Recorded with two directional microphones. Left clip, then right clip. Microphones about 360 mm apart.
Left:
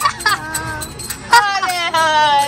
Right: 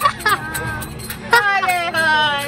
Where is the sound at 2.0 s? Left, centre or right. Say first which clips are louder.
Left 3 dB; left.